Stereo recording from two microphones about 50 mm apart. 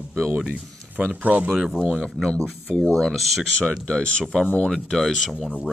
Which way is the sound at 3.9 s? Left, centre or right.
Centre.